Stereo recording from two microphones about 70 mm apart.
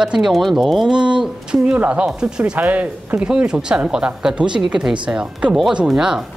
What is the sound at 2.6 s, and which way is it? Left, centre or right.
A woman's voice, right.